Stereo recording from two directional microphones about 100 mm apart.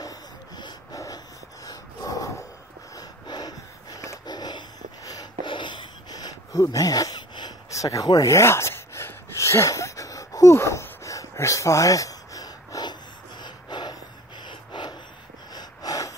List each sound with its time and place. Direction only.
0.0 s wheeze: 45° left (ahead or behind)
1.7 s dog: 35° left (ahead or behind)
3.0 s wheeze: 45° left (ahead or behind)
6.6 s a sound: 35° left (ahead or behind)
7.7 s a sound: 35° left (ahead or behind)
14.4 s snort: 50° left (ahead or behind)
15.5 s wheeze: 40° left (ahead or behind)